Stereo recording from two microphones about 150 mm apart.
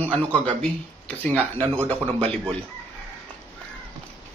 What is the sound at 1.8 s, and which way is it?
Speech, 40° right (ahead or behind).